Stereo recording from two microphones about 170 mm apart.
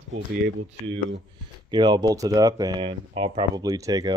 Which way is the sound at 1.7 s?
25° right (ahead or behind).